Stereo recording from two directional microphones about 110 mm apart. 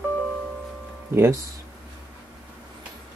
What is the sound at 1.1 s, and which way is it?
Speech, 25° right (ahead or behind).